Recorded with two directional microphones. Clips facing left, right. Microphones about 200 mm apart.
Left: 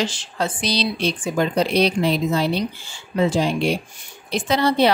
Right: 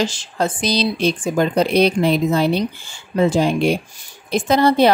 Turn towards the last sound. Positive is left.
turn(degrees=-45)  # may be behind; listen again after turning